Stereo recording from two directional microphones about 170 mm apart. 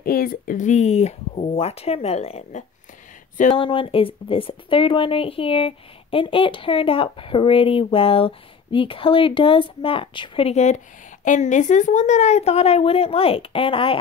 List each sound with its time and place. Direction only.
0.0 s speech: 60° left (ahead or behind); by 13.9 s 30° left (ahead or behind)